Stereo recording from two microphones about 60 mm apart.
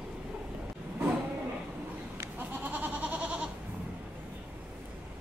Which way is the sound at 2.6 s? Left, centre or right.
Right.